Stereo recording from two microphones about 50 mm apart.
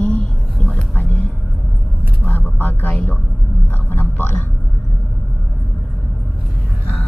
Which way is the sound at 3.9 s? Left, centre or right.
Left.